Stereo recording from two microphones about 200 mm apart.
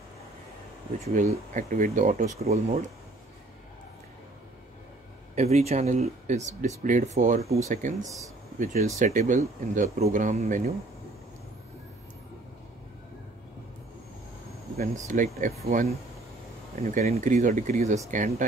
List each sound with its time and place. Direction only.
1.0 s speech: 35° right (ahead or behind)
5.3 s speech: 35° right (ahead or behind)
14.8 s speech: 40° right (ahead or behind)
16.8 s speech: 35° right (ahead or behind)